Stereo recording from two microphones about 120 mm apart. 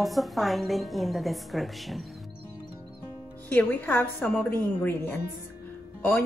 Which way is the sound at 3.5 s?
15° left (ahead or behind).